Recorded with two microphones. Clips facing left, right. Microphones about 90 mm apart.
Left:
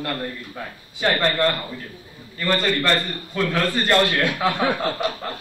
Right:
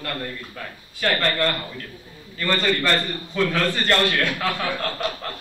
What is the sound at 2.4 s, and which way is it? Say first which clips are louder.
A man's voice: left 1 dB; 5° left (ahead or behind).